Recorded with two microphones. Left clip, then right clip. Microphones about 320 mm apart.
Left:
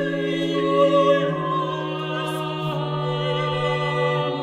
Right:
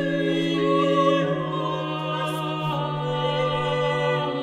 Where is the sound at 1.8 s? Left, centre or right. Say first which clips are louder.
Even; centre.